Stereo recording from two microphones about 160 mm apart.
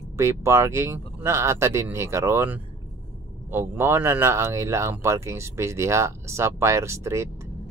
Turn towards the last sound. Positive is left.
turn(degrees=-15)  # may be behind; listen again after turning